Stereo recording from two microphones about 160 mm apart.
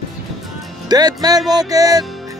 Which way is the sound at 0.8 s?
25° right (ahead or behind).